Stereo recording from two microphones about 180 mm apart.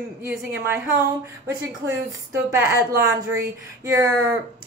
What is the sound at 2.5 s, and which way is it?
A woman's voice, 15° right (ahead or behind).